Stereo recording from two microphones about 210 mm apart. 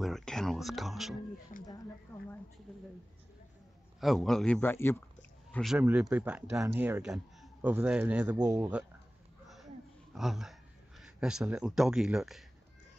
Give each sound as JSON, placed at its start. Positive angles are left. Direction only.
{"t": 0.0, "sound": "a sound", "side_deg": 0}
{"t": 4.0, "sound": "speech", "side_deg": 0}
{"t": 10.1, "sound": "speech", "side_deg": 0}